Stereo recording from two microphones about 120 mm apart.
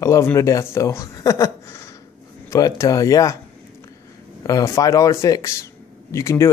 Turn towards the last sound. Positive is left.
turn(degrees=25)  # may be behind; listen again after turning